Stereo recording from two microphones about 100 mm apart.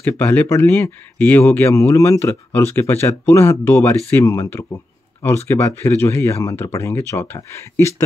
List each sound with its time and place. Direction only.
0.0 s speech: 15° left (ahead or behind)